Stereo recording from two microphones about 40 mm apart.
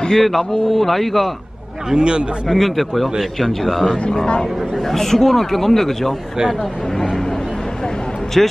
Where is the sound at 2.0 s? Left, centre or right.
Right.